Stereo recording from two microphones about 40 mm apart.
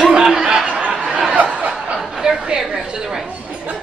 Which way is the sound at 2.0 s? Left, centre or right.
Centre.